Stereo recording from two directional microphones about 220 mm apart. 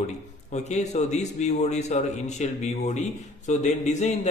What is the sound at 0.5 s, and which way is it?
A man's voice, 30° left (ahead or behind).